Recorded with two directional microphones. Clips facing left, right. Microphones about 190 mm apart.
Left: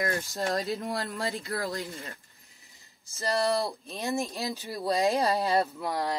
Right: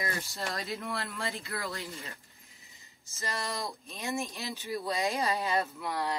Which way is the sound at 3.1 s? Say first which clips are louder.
Left 10 dB; 35° left (ahead or behind).